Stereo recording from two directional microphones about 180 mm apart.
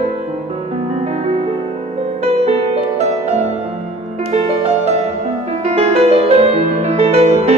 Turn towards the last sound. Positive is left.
turn(degrees=-35)  # may be behind; listen again after turning